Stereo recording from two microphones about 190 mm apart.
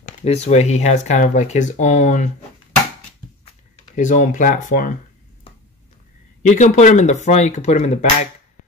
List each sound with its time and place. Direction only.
0.0 s speech: 35° left (ahead or behind)
3.9 s speech: 40° left (ahead or behind)
6.4 s speech: 40° left (ahead or behind)